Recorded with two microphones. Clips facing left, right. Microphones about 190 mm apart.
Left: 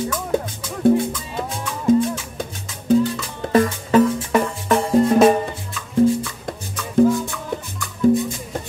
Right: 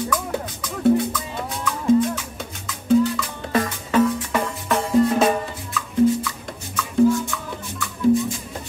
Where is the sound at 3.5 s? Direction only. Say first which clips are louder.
Left 4 dB; 40° left (ahead or behind).